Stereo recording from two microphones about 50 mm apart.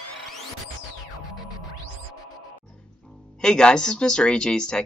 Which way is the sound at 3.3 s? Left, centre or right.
Centre.